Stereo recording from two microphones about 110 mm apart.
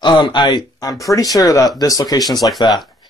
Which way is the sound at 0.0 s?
45° left (ahead or behind).